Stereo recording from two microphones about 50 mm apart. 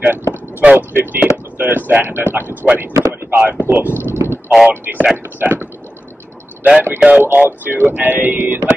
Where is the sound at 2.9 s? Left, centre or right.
Right.